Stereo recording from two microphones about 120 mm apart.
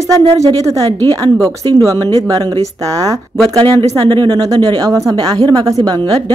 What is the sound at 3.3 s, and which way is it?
Speech, 40° right (ahead or behind).